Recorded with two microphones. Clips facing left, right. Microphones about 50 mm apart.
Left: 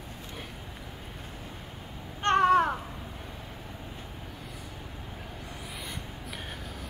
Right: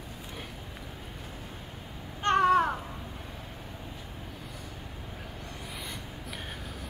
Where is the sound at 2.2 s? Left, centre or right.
Left.